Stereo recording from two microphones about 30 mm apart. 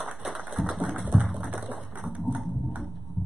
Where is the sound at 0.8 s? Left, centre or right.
Right.